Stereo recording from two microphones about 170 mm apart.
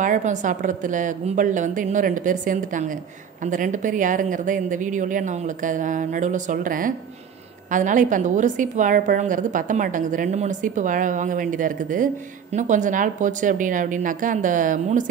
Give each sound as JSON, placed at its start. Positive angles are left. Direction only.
{"t": 0.0, "sound": "a woman's voice", "side_deg": -45}